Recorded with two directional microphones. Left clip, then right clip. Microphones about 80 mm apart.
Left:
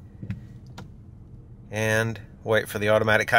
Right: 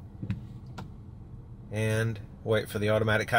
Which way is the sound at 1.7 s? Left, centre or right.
Left.